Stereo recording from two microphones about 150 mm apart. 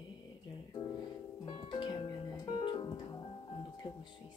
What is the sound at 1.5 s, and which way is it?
Music, 30° left (ahead or behind).